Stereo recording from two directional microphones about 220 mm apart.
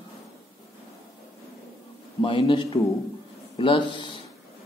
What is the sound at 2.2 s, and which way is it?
Speech, 25° left (ahead or behind).